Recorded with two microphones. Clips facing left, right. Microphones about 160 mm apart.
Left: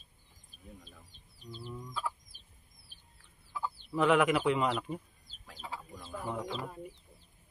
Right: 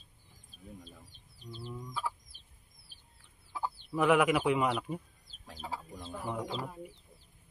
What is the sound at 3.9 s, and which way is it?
A man's voice, 10° right (ahead or behind).